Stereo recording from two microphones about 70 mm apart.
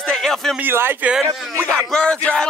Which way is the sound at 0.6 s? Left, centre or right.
Right.